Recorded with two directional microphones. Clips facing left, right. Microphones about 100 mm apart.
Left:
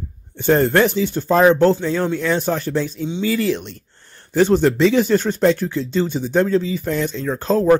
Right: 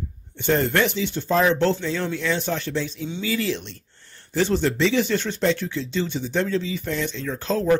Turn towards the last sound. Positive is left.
turn(degrees=45)  # may be behind; listen again after turning